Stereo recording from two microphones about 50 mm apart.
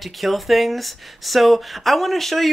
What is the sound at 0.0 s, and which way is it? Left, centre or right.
Speech, centre.